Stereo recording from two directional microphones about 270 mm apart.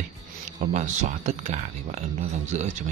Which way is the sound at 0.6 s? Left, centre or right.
Right.